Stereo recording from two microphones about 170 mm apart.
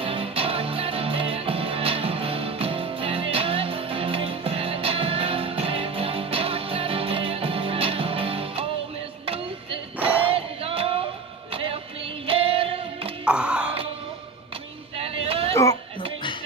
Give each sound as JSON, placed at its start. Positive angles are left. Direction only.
{"t": 0.0, "sound": "music", "side_deg": -35}
{"t": 9.9, "sound": "music", "side_deg": -10}
{"t": 10.3, "sound": "music", "side_deg": -35}
{"t": 13.2, "sound": "music", "side_deg": -5}
{"t": 15.0, "sound": "a sound", "side_deg": -35}
{"t": 15.5, "sound": "a sound", "side_deg": 20}